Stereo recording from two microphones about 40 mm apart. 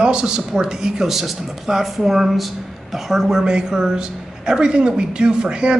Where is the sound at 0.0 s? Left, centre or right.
Right.